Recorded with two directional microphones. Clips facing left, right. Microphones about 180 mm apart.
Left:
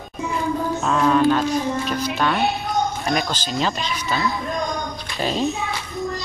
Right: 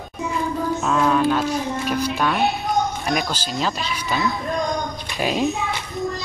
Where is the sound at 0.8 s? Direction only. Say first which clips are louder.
Left 2 dB; 5° right (ahead or behind).